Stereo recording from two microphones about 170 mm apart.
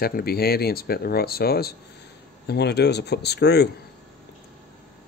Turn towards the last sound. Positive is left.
turn(degrees=75)  # may be behind; listen again after turning